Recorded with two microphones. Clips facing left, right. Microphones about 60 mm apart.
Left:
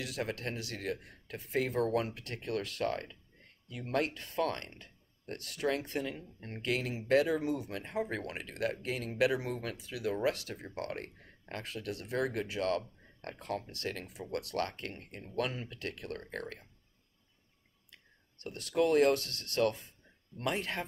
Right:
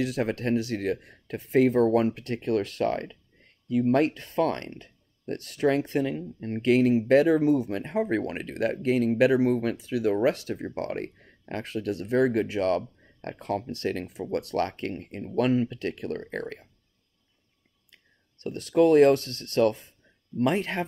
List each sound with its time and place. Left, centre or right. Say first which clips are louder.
0.2 s speech: right 8 dB; right
10.3 s speech: right 10 dB; right
10.6 s speech: right 8 dB; right
18.4 s speech: right 9 dB; right